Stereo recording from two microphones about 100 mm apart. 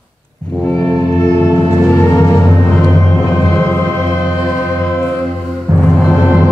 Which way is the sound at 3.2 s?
30° left (ahead or behind).